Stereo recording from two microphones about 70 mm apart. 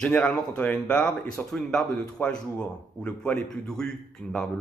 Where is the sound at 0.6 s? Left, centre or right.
Centre.